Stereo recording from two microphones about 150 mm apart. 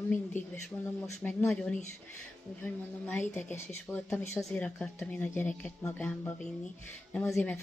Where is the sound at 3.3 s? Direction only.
15° left (ahead or behind).